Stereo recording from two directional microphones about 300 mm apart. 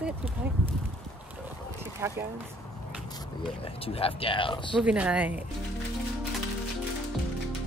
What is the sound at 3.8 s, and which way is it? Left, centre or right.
Speech, centre.